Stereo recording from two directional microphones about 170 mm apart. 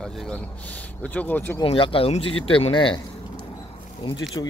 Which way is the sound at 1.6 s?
30° left (ahead or behind).